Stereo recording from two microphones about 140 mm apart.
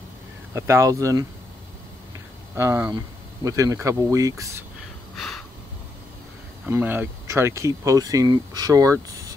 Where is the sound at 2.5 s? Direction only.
15° right (ahead or behind).